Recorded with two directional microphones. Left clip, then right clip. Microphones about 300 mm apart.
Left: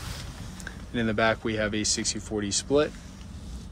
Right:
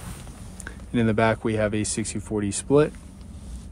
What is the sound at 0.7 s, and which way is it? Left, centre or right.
Speech, centre.